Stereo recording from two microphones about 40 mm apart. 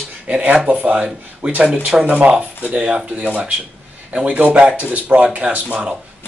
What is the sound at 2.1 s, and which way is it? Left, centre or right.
Speech, right.